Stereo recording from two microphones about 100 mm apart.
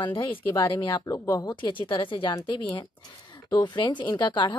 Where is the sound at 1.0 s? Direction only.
35° left (ahead or behind).